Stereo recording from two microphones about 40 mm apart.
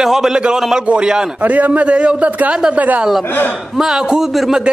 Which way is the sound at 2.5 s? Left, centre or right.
Right.